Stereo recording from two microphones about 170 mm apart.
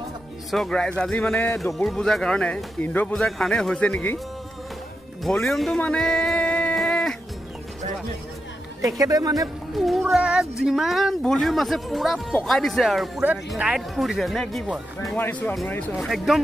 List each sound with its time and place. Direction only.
0.5 s speech: centre (ahead or behind)
5.2 s speech: centre (ahead or behind)
8.8 s speech: 20° right (ahead or behind)
9.8 s speech: centre (ahead or behind)